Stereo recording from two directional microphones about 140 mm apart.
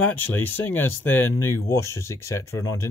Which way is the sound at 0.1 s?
15° left (ahead or behind).